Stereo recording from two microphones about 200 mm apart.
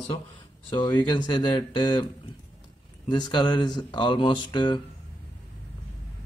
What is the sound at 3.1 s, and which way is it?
Speech, 20° left (ahead or behind).